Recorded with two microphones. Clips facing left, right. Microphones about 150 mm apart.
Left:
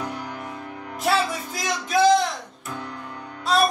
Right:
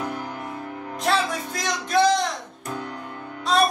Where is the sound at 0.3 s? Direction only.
Centre (ahead or behind).